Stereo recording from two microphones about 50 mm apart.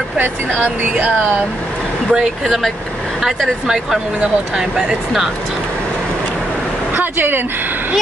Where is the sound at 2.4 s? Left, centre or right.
Centre.